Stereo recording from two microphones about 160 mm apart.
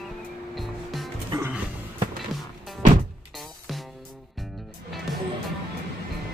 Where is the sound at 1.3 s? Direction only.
25° right (ahead or behind).